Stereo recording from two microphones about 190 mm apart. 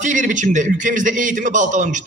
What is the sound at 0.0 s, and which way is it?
A man's voice, 40° right (ahead or behind).